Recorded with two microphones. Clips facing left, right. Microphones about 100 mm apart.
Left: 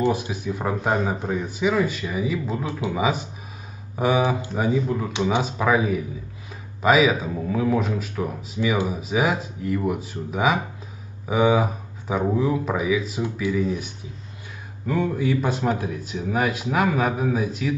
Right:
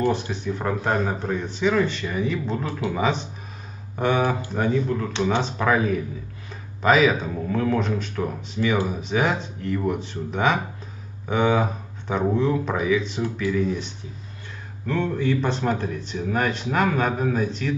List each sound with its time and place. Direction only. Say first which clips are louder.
0.1 s a man's voice: even; 5° left (ahead or behind)
13.2 s a man's voice: even; 15° left (ahead or behind)